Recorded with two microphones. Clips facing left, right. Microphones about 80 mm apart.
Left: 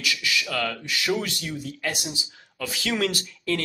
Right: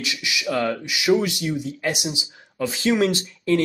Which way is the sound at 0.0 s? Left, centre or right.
Right.